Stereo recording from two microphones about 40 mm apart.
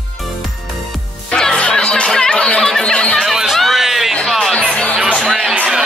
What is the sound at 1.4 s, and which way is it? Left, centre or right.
Music, left.